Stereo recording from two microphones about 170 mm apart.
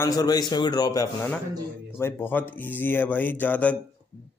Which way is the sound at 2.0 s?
10° left (ahead or behind).